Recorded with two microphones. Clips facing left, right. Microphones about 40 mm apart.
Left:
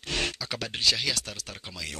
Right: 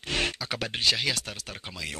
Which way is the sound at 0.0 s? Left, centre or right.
Centre.